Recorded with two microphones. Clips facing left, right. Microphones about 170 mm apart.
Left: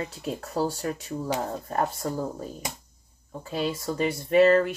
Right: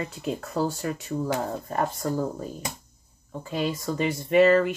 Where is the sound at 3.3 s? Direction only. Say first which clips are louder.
Right 1 dB; 35° left (ahead or behind).